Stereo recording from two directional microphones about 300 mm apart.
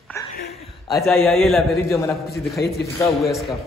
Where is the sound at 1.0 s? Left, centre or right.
Centre.